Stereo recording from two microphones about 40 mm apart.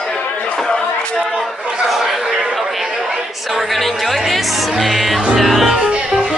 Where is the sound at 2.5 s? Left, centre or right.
Centre.